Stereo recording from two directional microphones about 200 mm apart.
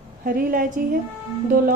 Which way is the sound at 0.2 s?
45° right (ahead or behind).